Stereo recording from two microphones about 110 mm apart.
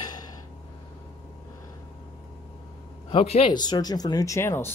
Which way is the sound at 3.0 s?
65° left (ahead or behind).